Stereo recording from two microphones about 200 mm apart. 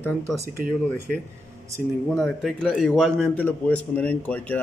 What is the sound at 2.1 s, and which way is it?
A man's voice, centre (ahead or behind).